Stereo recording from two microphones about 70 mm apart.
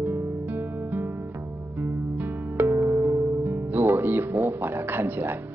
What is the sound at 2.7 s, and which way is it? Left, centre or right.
Music, right.